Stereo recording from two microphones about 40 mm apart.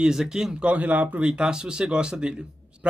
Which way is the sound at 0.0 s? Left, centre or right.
Centre.